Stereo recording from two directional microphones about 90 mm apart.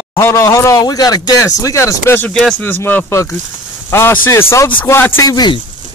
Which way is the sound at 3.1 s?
30° left (ahead or behind).